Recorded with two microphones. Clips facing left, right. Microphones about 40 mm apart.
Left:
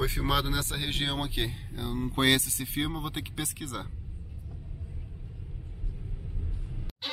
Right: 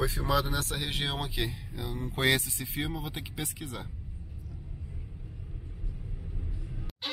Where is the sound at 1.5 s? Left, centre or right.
Left.